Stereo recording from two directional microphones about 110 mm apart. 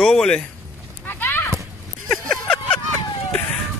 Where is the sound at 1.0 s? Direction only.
20° left (ahead or behind).